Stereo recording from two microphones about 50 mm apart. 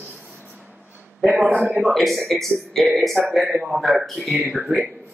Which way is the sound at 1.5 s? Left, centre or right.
Right.